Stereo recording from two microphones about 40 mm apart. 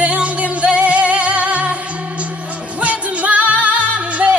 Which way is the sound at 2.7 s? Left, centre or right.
Right.